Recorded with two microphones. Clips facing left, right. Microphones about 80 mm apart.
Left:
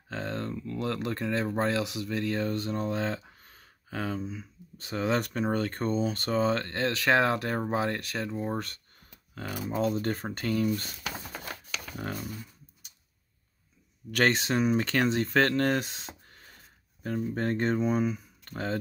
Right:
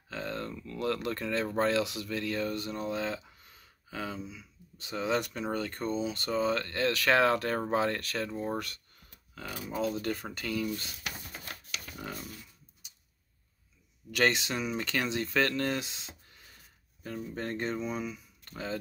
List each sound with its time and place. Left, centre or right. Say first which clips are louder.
0.1 s a sound: left 3 dB; left
0.7 s speech: right 1 dB; left
9.7 s speech: left 3 dB; left
11.1 s typewriter: left 5 dB; left
11.9 s speech: left 5 dB; left
14.1 s speech: left 3 dB; left